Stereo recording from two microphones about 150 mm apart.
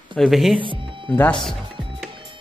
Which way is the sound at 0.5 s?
35° right (ahead or behind).